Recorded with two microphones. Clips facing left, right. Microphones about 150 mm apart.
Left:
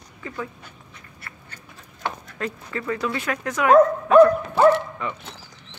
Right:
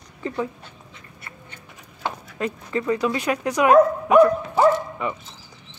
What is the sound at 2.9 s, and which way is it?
Speech, 15° right (ahead or behind).